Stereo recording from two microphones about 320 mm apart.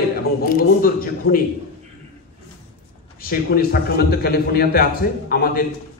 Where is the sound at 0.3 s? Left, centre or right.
Left.